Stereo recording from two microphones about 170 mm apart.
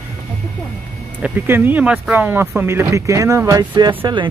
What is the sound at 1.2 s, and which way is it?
Speech, 10° right (ahead or behind).